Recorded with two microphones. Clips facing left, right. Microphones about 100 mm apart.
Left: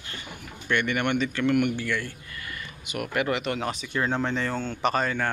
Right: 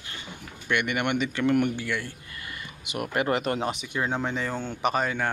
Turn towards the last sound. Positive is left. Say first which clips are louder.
# left 1 dB
turn(degrees=-10)  # may be behind; listen again after turning